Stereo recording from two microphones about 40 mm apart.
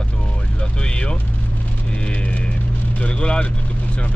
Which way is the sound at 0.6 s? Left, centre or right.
Left.